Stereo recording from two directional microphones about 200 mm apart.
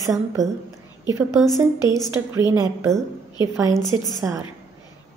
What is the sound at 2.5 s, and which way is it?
A woman's voice, 15° right (ahead or behind).